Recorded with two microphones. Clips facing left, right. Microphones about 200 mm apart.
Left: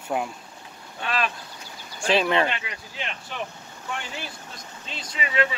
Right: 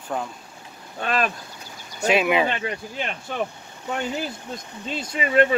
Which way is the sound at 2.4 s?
45° right (ahead or behind).